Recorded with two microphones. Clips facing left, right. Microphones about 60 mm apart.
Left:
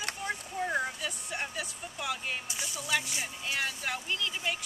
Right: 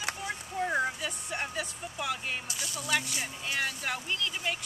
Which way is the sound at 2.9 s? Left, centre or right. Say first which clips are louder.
Even; centre.